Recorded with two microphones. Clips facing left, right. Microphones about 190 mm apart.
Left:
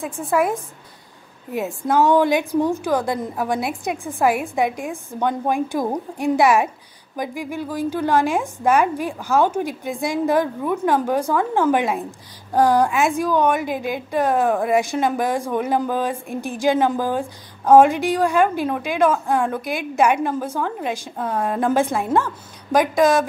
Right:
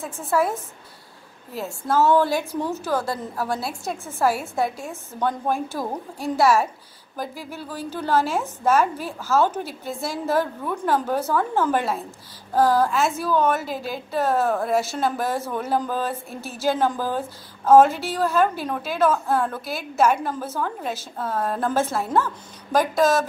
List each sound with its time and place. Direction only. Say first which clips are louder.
0.0 s a woman's voice: left 2 dB; 15° left (ahead or behind)
2.1 s a woman's voice: left 4 dB; 15° left (ahead or behind)